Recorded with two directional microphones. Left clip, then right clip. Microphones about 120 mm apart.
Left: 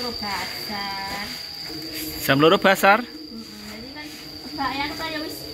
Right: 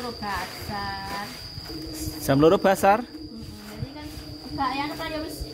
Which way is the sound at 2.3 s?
25° right (ahead or behind).